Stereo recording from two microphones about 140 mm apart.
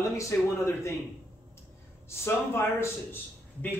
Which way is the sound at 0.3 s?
20° left (ahead or behind).